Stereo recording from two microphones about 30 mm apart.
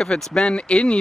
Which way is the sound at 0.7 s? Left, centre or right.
Left.